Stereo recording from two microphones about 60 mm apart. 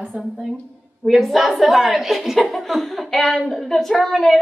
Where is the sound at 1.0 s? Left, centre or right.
Centre.